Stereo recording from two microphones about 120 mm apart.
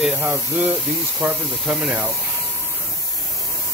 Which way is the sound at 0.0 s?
10° right (ahead or behind).